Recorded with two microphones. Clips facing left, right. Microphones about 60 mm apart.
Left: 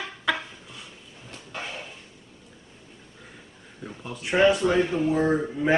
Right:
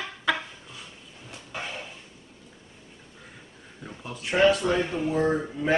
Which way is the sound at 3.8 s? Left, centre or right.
Centre.